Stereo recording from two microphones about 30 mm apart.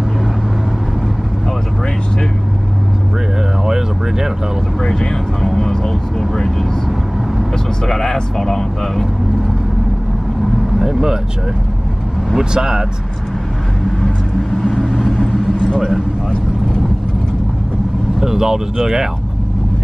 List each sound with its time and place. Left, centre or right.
3.6 s a sound: centre
4.8 s speech: centre
5.4 s speech: centre
7.8 s speech: centre
10.8 s speech: centre
12.4 s speech: centre
14.7 s vehicle: centre
15.5 s vehicle: left
18.2 s speech: centre